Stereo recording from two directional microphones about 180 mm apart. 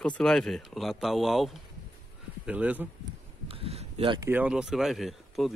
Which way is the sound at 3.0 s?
30° right (ahead or behind).